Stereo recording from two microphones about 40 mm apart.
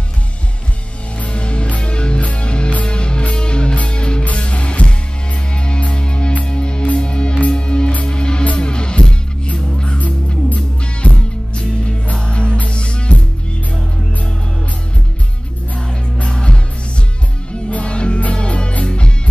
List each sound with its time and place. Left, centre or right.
1.2 s music: left
4.2 s music: left
9.9 s music: left
16.3 s music: left
17.6 s music: left